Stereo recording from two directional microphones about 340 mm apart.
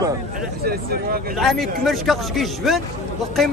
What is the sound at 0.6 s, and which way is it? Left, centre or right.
Speech, right.